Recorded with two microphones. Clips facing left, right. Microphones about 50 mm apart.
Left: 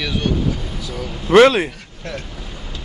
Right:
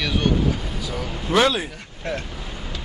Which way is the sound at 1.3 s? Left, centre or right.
Left.